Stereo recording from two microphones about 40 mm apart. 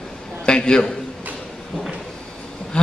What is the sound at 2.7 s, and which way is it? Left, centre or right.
Insect, left.